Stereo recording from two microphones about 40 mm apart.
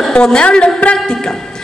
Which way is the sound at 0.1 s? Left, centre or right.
Left.